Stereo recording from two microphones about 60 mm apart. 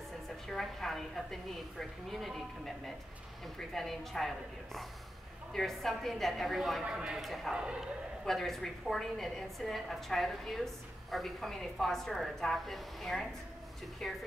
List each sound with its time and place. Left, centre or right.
0.5 s a woman's voice: centre
5.5 s a woman's voice: centre
7.2 s a woman's voice: centre
7.5 s a man's voice: centre
8.3 s a woman's voice: centre